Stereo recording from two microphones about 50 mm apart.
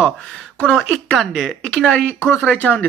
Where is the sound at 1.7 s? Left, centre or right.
Centre.